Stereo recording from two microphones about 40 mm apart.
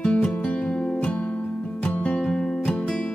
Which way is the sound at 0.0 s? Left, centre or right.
Left.